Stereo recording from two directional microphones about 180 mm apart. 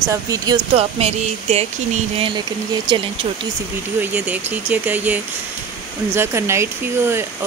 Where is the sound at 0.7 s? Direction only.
35° right (ahead or behind).